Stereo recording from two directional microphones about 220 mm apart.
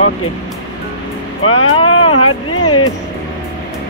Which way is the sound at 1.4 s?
70° left (ahead or behind).